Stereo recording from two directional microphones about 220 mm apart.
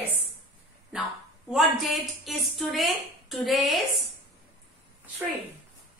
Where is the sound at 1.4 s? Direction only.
Centre (ahead or behind).